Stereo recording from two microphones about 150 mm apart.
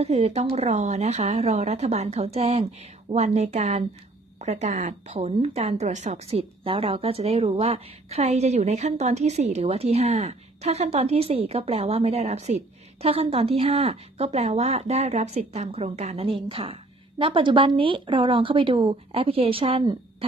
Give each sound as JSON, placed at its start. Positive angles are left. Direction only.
{"t": 0.0, "sound": "a woman's voice", "side_deg": -45}